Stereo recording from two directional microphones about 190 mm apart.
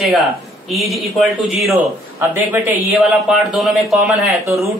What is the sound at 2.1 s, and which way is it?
Speech, 10° right (ahead or behind).